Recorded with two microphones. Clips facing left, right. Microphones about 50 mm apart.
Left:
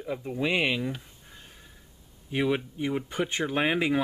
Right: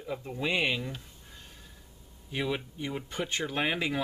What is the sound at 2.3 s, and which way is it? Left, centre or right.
Speech, centre.